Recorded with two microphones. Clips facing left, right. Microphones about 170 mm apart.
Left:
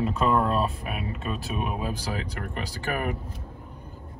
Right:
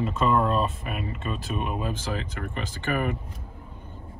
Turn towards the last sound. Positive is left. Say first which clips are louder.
# right 2 dB
turn(degrees=0)  # may be behind; listen again after turning